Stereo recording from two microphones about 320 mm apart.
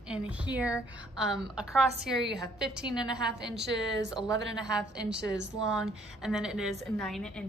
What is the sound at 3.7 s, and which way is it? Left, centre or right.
Speech, right.